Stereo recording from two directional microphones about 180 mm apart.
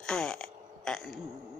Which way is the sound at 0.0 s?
5° left (ahead or behind).